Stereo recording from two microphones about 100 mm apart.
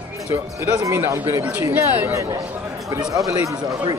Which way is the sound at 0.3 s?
30° right (ahead or behind).